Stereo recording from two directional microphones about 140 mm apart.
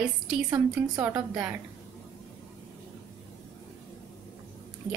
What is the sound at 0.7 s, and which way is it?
Speech, 15° right (ahead or behind).